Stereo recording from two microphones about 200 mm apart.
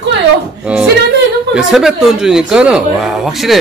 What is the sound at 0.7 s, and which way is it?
Speech, 5° right (ahead or behind).